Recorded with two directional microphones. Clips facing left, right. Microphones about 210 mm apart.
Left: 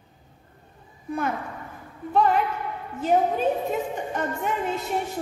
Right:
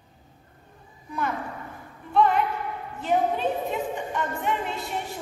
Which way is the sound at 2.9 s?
40° left (ahead or behind).